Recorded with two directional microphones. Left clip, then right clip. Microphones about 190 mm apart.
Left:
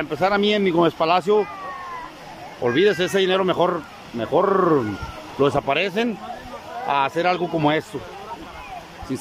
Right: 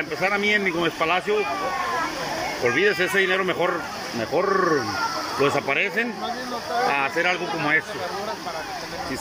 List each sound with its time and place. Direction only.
0.2 s speech: 15° left (ahead or behind)
2.6 s speech: 15° left (ahead or behind)